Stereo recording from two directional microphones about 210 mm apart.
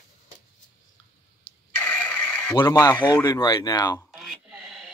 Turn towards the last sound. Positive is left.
turn(degrees=0)  # may be behind; listen again after turning